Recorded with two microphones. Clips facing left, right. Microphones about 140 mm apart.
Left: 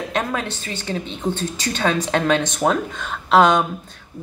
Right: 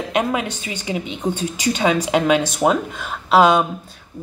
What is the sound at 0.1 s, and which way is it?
A woman's voice, 15° right (ahead or behind).